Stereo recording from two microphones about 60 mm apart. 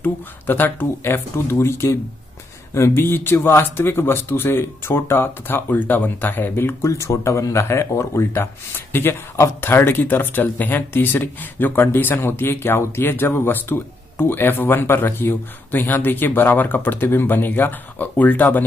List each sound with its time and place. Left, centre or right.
0.0 s speech: left
6.8 s speech: left
8.3 s speech: left